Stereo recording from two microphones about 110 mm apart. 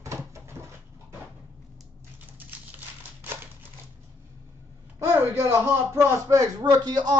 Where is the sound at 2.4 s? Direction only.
15° right (ahead or behind).